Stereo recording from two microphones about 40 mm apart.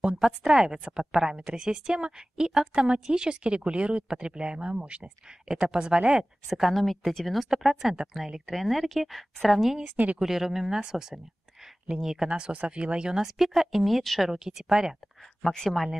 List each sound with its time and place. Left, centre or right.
0.2 s a woman's voice: centre
6.4 s a woman's voice: centre
9.8 s speech: right
10.1 s a woman's voice: centre
12.3 s a woman's voice: right; by 14.3 s centre
14.3 s a woman's voice: centre
15.7 s a woman's voice: centre